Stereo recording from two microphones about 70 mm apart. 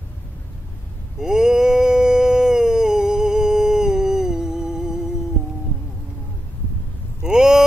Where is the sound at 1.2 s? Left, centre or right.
Centre.